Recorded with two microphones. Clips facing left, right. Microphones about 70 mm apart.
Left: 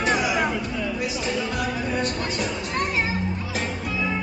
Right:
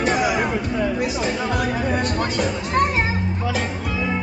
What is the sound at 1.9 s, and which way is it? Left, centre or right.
Music, right.